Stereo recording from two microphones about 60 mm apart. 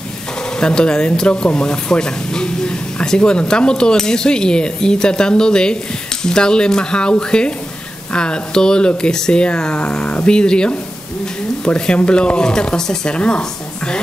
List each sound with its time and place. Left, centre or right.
0.6 s speech: centre